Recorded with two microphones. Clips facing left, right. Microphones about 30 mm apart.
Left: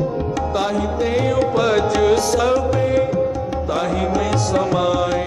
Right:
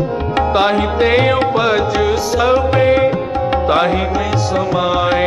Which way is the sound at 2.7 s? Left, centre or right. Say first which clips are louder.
Right 5 dB; right.